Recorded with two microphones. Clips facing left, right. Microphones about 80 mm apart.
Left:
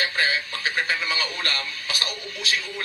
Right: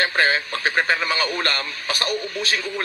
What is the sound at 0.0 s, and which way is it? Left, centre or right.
Speech, right.